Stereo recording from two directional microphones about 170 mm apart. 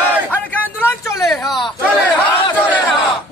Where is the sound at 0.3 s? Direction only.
10° left (ahead or behind).